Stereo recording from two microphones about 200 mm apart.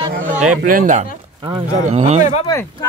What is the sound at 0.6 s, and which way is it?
Speech, 45° right (ahead or behind).